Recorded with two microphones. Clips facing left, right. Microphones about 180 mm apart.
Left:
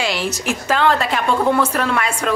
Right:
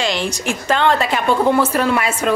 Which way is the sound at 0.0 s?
5° left (ahead or behind).